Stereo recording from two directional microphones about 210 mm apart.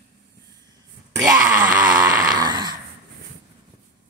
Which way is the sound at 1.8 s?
40° right (ahead or behind).